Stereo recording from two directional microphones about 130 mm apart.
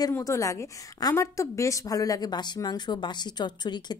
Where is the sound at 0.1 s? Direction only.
25° left (ahead or behind).